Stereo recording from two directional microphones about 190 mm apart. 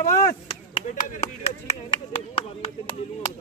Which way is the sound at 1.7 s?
30° left (ahead or behind).